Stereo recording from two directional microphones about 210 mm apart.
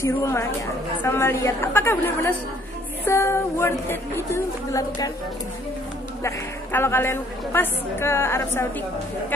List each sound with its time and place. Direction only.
0.0 s a woman's voice: 10° left (ahead or behind)
6.2 s a woman's voice: 10° left (ahead or behind)